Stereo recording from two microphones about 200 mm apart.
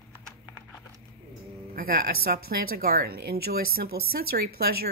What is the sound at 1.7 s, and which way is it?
Speech, 50° right (ahead or behind).